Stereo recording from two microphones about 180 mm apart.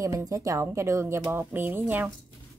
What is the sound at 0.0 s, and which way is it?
Speech, 15° right (ahead or behind).